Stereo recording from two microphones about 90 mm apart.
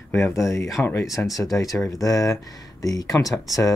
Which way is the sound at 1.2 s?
15° left (ahead or behind).